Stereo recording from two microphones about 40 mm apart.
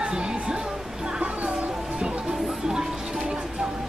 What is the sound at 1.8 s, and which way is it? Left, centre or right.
Music, centre.